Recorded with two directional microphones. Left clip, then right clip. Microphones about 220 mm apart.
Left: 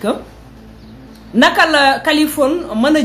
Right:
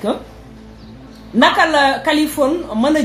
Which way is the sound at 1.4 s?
Centre (ahead or behind).